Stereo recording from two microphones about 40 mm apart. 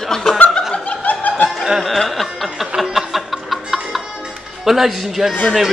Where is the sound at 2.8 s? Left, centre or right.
Centre.